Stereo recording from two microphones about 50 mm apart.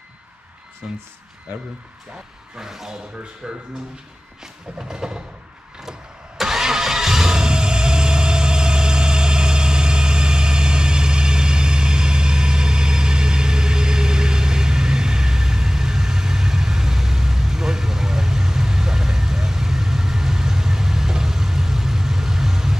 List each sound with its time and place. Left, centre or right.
0.8 s speech: right
2.5 s music: centre
3.4 s speech: centre
4.4 s music: centre
5.8 s vehicle: centre